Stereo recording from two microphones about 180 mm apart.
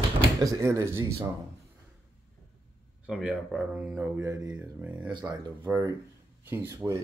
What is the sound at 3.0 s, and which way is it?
Speech, 5° right (ahead or behind).